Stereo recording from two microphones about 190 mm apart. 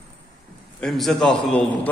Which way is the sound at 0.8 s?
Centre (ahead or behind).